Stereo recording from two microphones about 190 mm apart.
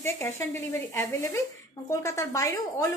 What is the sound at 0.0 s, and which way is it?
Speech, 15° left (ahead or behind).